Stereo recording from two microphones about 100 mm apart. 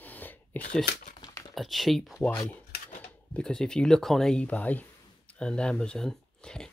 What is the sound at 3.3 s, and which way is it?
Speech, 5° left (ahead or behind).